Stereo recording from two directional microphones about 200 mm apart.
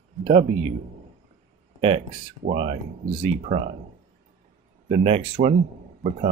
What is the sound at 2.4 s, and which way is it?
Speech, 30° right (ahead or behind).